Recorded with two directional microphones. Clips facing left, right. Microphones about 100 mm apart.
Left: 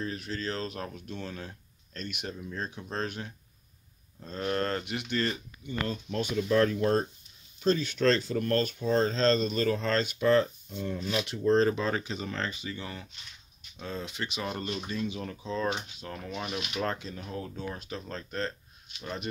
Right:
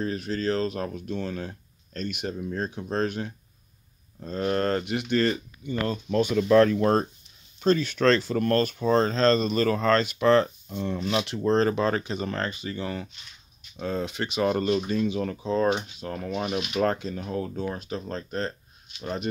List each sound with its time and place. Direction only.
0.0 s speech: 50° right (ahead or behind)
2.0 s speech: 35° right (ahead or behind)
5.1 s speech: 55° right (ahead or behind)
5.7 s speech: 90° right
7.6 s speech: 65° right (ahead or behind)
17.6 s speech: 35° right (ahead or behind)